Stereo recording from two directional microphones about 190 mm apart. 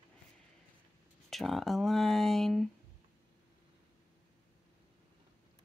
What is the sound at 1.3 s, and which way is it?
Speech, centre (ahead or behind).